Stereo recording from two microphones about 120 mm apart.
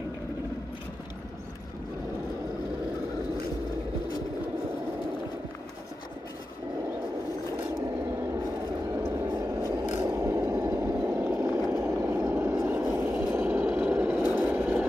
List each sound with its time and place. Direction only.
9.1 s vehicle: 25° right (ahead or behind)